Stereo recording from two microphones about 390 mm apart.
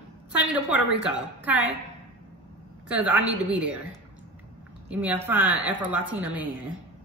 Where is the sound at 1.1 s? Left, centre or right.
Centre.